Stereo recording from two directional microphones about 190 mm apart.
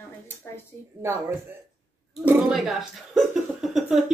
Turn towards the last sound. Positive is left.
turn(degrees=0)  # may be behind; listen again after turning